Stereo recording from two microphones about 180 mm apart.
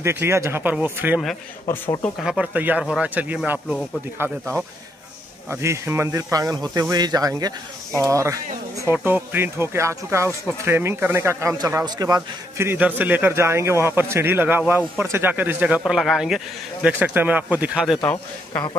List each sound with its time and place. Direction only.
0.0 s a man's voice: 15° right (ahead or behind)
1.7 s a man's voice: 10° left (ahead or behind)
2.1 s a man's voice: 5° right (ahead or behind)
5.5 s a man's voice: 15° right (ahead or behind)
18.0 s a man's voice: 15° left (ahead or behind)